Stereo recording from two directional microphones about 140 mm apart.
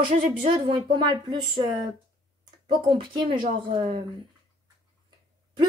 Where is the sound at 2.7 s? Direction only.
35° right (ahead or behind).